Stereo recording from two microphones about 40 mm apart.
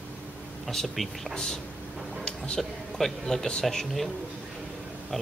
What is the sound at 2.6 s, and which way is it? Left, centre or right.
Speech, centre.